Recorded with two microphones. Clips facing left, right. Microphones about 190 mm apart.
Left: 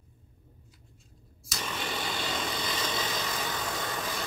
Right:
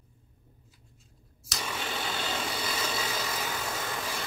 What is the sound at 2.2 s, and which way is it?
Vehicle, 10° right (ahead or behind).